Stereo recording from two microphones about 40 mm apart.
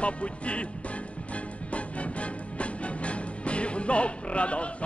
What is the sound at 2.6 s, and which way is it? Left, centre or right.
Music, left.